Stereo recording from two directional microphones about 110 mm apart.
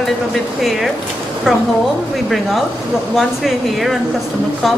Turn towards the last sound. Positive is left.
turn(degrees=0)  # may be behind; listen again after turning